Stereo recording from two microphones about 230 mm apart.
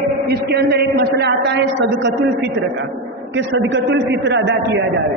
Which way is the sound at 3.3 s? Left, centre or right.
Right.